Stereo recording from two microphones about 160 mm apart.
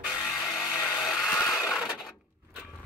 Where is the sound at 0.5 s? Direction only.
Centre (ahead or behind).